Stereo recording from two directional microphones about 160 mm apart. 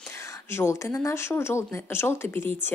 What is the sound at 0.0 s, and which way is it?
Speech, 15° left (ahead or behind).